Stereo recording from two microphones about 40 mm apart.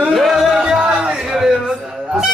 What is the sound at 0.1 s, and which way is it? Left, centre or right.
Music, centre.